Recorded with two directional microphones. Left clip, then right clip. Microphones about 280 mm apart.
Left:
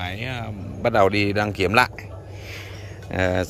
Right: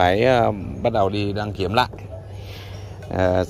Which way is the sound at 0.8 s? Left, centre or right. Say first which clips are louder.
Left 2 dB; left.